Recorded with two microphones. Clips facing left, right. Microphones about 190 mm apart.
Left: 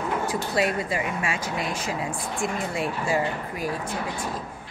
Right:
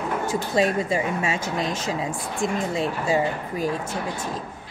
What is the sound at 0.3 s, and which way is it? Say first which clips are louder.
Speech: right 5 dB; 25° right (ahead or behind).